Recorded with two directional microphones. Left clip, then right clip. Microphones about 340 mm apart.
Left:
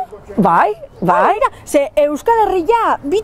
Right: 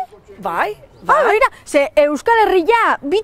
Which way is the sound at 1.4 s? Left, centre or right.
Right.